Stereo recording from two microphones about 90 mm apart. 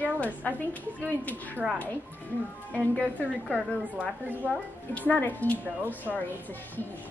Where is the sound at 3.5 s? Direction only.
20° right (ahead or behind).